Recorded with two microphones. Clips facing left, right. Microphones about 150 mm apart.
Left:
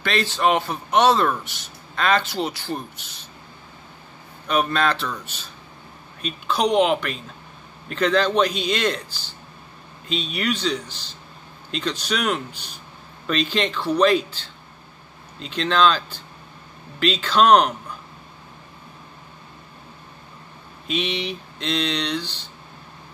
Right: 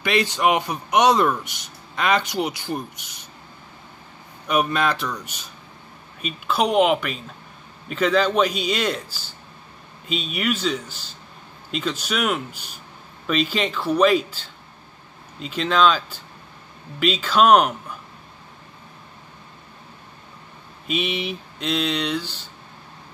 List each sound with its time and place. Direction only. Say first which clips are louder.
0.0 s a man's voice: right 1 dB; 15° right (ahead or behind)
4.5 s a man's voice: even; 10° right (ahead or behind)
20.8 s a man's voice: even; 5° right (ahead or behind)